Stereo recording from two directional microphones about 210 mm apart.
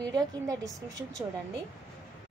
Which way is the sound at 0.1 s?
15° right (ahead or behind).